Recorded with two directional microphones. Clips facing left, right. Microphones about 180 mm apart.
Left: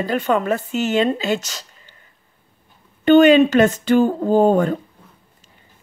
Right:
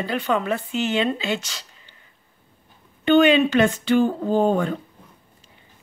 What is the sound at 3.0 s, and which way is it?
Speech, 45° left (ahead or behind).